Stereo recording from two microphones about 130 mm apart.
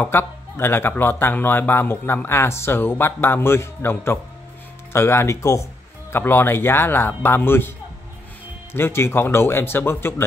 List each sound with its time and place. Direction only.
0.0 s speech: 15° left (ahead or behind)
8.7 s speech: 20° left (ahead or behind)